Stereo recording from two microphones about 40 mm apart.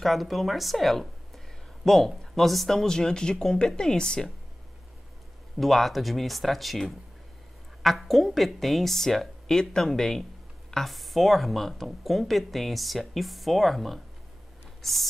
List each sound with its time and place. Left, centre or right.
0.0 s speech: centre
5.6 s a woman's voice: centre
14.8 s a sound: centre